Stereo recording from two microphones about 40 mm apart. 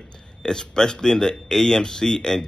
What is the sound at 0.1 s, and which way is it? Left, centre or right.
A man's voice, centre.